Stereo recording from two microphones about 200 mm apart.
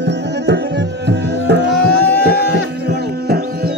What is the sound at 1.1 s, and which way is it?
Music, 55° right (ahead or behind).